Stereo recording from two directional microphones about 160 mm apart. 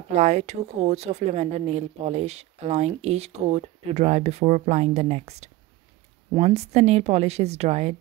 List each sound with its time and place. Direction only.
0.1 s a woman's voice: 45° right (ahead or behind)